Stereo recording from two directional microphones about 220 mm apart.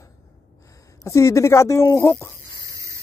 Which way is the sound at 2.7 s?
15° right (ahead or behind).